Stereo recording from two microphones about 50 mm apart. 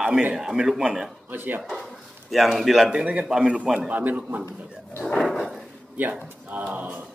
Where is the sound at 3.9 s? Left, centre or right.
Right.